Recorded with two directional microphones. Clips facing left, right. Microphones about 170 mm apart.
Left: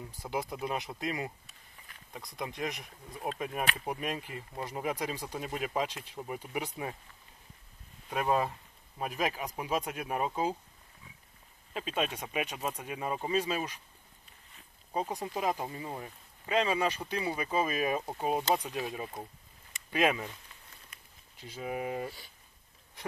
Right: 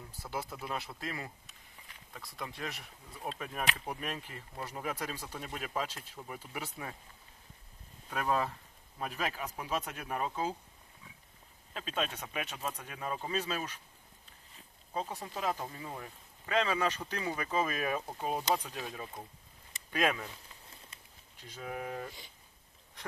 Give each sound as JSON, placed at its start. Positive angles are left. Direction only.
{"t": 0.2, "sound": "speech", "side_deg": 15}
{"t": 8.1, "sound": "speech", "side_deg": 10}
{"t": 11.7, "sound": "speech", "side_deg": 10}
{"t": 15.0, "sound": "speech", "side_deg": 15}
{"t": 20.9, "sound": "bird", "side_deg": -30}
{"t": 21.4, "sound": "speech", "side_deg": 10}